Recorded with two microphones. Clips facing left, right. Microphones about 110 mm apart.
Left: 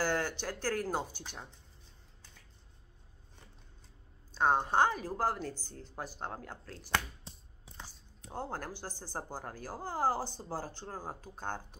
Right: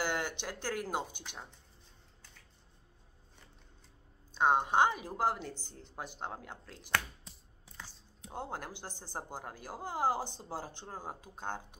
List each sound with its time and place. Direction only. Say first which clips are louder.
0.0 s speech: left 2 dB; 20° right (ahead or behind)
4.4 s a woman's voice: even; 15° right (ahead or behind)
7.3 s a sound: left 3 dB; 30° left (ahead or behind)
8.2 s speech: left 1 dB; 20° right (ahead or behind)